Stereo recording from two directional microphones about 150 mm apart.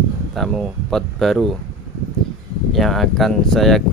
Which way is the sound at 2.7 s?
Centre (ahead or behind).